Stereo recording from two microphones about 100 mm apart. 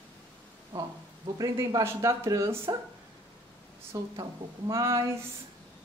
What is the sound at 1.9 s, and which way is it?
Speech, 30° right (ahead or behind).